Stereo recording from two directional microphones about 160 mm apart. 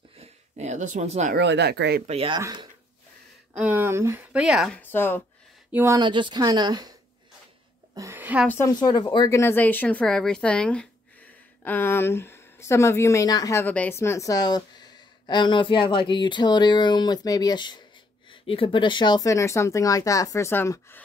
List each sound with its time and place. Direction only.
0.2 s a sound: 45° right (ahead or behind)
1.3 s speech: 90° right
2.0 s a woman's voice: 35° right (ahead or behind)
3.5 s speech: 10° right (ahead or behind)
4.7 s speech: 15° left (ahead or behind)
5.7 s speech: 10° right (ahead or behind)
5.9 s a woman's voice: 30° right (ahead or behind)
7.9 s a sound: 20° right (ahead or behind)
8.5 s speech: 20° left (ahead or behind)